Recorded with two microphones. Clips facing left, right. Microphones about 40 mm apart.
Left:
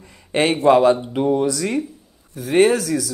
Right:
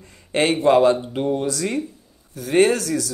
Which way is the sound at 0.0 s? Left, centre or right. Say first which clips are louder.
Left 1 dB; centre.